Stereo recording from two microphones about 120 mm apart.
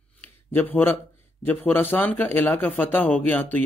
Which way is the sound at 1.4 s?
15° left (ahead or behind).